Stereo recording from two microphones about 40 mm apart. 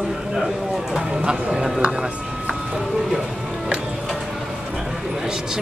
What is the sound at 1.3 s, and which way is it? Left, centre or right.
Speech, right.